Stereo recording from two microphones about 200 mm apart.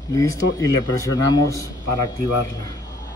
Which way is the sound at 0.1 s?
15° left (ahead or behind).